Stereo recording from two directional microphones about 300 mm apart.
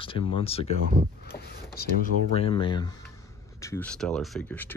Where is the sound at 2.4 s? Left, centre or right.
Centre.